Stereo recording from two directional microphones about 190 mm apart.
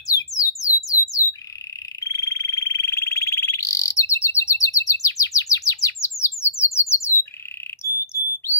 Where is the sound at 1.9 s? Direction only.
15° left (ahead or behind).